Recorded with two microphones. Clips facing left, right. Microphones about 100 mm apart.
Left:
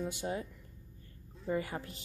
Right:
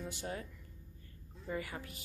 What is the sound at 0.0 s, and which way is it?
Speech, 15° left (ahead or behind).